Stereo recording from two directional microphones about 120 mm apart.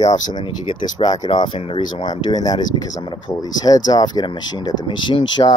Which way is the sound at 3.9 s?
35° left (ahead or behind).